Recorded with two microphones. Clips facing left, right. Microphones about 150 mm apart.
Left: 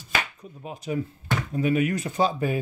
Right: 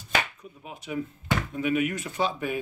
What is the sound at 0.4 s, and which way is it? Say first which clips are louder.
Speech: left 4 dB; 35° left (ahead or behind).